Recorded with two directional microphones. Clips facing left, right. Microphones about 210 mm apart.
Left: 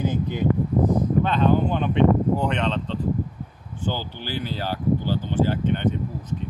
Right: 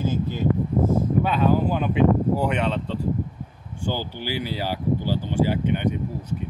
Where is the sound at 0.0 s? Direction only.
15° left (ahead or behind).